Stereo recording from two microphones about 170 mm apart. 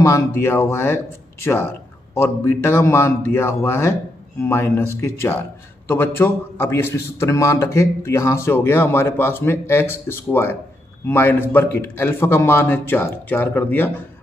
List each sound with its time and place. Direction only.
0.0 s a man's voice: 15° left (ahead or behind)